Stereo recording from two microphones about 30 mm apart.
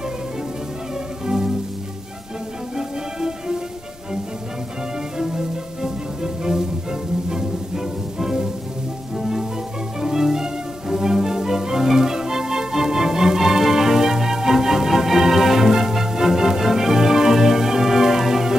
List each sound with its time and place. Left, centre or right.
1.2 s music: centre
2.7 s music: centre
5.1 s music: centre